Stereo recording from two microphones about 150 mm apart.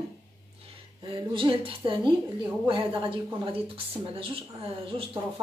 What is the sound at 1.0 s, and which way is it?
Speech, 35° right (ahead or behind).